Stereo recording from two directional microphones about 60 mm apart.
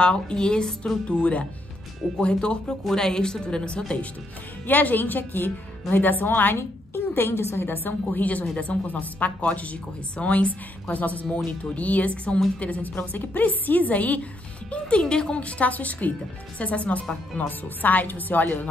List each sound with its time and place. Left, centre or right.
0.0 s a woman's voice: centre
4.6 s a woman's voice: left